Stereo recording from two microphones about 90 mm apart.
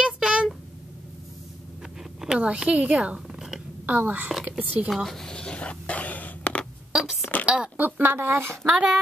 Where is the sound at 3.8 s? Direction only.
20° right (ahead or behind).